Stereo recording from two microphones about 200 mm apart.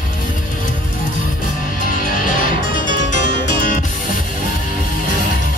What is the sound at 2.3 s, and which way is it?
Music, 40° left (ahead or behind).